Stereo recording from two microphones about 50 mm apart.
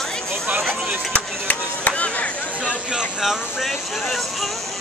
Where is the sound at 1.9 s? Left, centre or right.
Left.